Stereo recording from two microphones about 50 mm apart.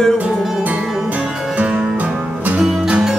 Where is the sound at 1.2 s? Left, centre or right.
Right.